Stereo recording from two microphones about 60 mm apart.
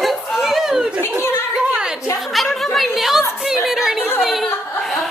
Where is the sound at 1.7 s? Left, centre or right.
Centre.